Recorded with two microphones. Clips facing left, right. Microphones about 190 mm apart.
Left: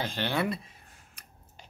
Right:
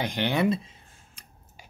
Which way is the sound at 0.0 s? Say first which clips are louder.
Right 5 dB; 15° right (ahead or behind).